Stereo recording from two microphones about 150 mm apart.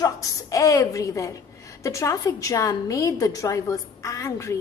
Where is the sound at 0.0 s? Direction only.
20° left (ahead or behind).